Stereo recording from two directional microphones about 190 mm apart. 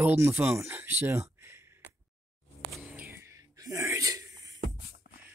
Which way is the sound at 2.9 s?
10° right (ahead or behind).